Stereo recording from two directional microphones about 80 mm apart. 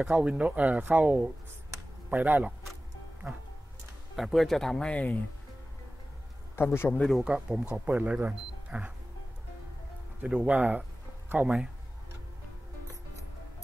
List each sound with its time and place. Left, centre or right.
0.0 s speech: centre
4.2 s speech: centre
6.5 s a man's voice: left
7.0 s speech: centre
7.2 s speech: centre
10.2 s speech: centre